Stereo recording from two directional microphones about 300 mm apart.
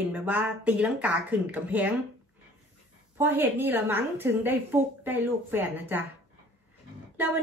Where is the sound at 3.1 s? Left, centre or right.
Centre.